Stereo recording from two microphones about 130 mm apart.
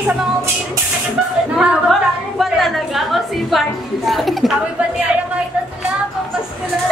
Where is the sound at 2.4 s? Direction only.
Centre (ahead or behind).